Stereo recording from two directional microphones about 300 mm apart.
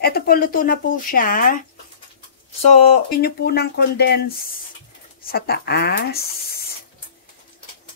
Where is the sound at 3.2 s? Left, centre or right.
Left.